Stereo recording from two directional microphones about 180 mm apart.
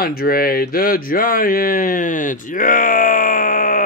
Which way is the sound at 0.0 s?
55° left (ahead or behind).